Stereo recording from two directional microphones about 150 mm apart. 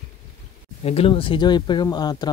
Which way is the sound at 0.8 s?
40° left (ahead or behind).